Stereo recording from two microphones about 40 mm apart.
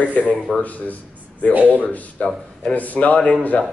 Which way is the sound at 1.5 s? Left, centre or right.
Right.